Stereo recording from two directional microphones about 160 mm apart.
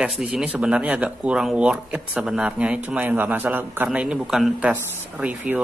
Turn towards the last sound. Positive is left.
turn(degrees=-10)  # may be behind; listen again after turning